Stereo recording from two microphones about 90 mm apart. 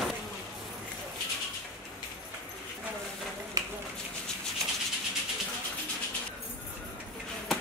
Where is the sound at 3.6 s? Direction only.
45° right (ahead or behind).